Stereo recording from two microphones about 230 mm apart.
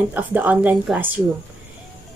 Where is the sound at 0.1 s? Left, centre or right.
Centre.